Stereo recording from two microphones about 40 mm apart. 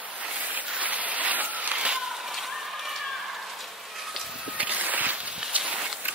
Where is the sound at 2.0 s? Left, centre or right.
Centre.